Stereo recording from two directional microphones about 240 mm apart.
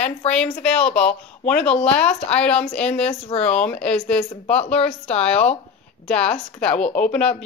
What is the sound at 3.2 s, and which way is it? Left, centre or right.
Speech, left.